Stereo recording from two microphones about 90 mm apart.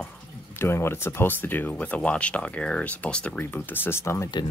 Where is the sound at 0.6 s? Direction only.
25° left (ahead or behind).